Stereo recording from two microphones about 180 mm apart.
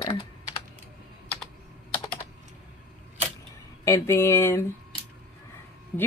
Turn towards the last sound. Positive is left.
turn(degrees=10)  # may be behind; listen again after turning